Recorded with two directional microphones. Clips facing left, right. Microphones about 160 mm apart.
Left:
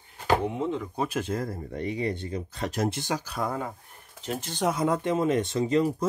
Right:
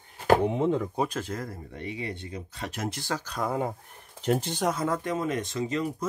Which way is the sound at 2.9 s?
20° left (ahead or behind).